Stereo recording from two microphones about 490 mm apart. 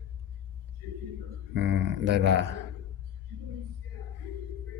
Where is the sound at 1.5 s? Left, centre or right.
Right.